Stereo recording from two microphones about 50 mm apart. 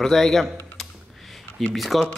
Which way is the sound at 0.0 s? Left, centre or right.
Centre.